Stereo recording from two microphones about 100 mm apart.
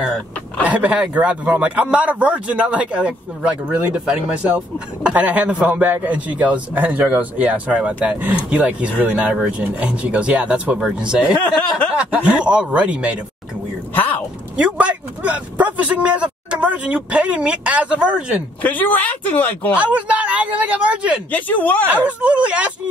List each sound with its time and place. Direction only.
0.7 s speech: 15° right (ahead or behind)
14.6 s speech: 15° right (ahead or behind)
18.6 s speech: 15° left (ahead or behind)
19.8 s speech: 15° right (ahead or behind)
21.3 s speech: 15° left (ahead or behind)
21.8 s speech: 15° right (ahead or behind)